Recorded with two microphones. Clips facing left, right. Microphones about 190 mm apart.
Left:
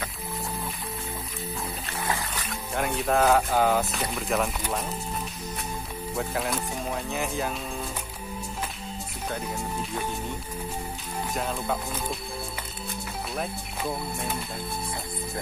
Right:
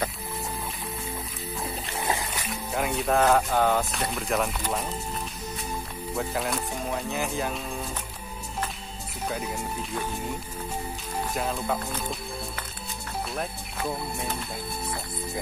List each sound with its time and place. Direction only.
2.0 s music: 20° right (ahead or behind)
2.3 s speech: centre (ahead or behind)
6.1 s speech: centre (ahead or behind)
11.3 s speech: centre (ahead or behind)